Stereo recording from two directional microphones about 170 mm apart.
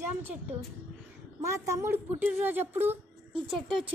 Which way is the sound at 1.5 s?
15° right (ahead or behind).